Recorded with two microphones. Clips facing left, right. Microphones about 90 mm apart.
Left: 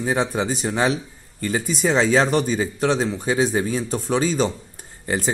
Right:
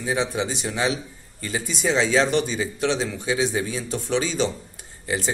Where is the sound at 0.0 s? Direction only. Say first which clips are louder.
Left 3 dB; 45° left (ahead or behind).